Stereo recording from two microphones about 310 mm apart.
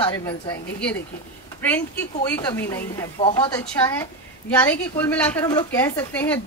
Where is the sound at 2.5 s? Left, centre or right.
Centre.